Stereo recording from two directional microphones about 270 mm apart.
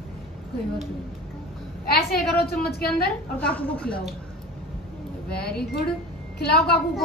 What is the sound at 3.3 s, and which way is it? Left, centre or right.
Speech, centre.